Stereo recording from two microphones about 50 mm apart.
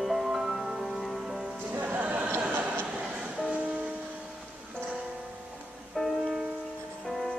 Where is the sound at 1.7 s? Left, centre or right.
Right.